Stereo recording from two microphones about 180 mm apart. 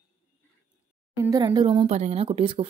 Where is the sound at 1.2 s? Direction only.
20° right (ahead or behind).